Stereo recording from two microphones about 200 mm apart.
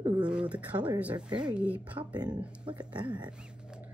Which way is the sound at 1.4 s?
5° right (ahead or behind).